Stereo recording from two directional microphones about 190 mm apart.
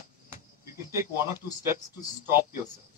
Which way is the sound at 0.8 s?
15° right (ahead or behind).